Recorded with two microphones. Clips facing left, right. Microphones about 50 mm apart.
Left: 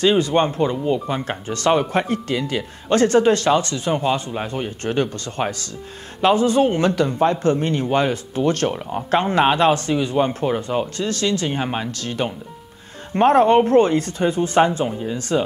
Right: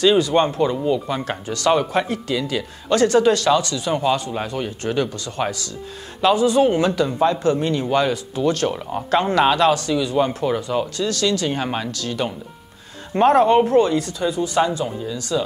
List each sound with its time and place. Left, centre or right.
0.2 s speech: left
8.7 s speech: left
11.9 s speech: left